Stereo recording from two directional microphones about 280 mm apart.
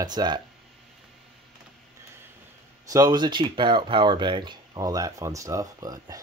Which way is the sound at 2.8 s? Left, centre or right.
Centre.